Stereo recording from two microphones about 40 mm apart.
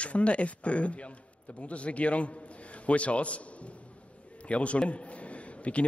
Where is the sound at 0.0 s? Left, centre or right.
Left.